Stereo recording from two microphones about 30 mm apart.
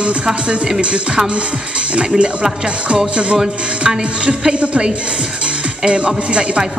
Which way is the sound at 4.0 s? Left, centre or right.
Right.